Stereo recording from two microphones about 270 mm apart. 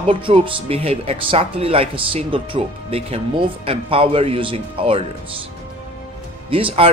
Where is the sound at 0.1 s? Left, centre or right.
Centre.